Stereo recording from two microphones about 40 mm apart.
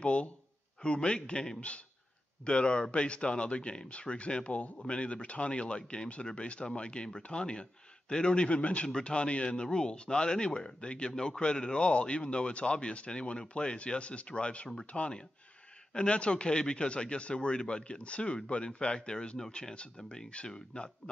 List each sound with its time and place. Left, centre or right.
0.0 s speech: left
8.8 s speech: left